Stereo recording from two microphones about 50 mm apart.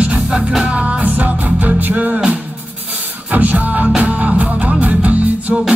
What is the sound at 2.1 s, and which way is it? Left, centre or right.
Music, centre.